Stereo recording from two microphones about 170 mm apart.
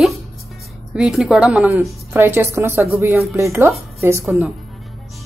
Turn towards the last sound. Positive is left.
turn(degrees=-15)  # may be behind; listen again after turning